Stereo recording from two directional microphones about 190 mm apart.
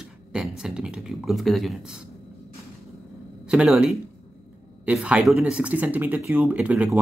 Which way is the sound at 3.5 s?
5° right (ahead or behind).